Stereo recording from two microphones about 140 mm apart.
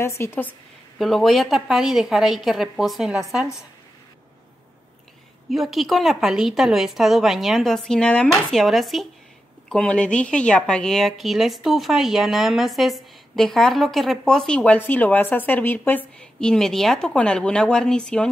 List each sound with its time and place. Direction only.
0.0 s speech: 20° left (ahead or behind)
0.9 s a woman's voice: centre (ahead or behind)
5.5 s a woman's voice: centre (ahead or behind)